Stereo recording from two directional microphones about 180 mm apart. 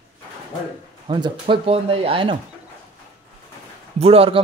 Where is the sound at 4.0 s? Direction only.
35° right (ahead or behind).